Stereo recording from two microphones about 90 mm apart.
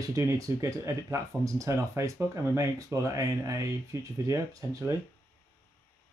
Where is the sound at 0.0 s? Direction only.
40° right (ahead or behind).